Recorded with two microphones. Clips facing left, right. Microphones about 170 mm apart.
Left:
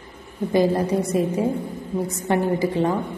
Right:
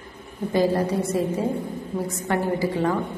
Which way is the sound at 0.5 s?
15° left (ahead or behind).